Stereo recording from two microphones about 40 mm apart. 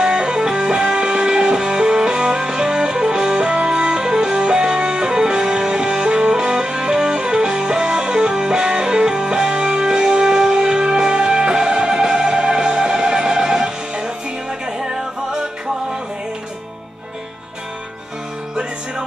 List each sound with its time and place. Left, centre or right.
0.0 s music: centre